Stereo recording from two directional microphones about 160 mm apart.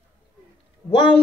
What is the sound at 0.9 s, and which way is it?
Speech, 30° left (ahead or behind).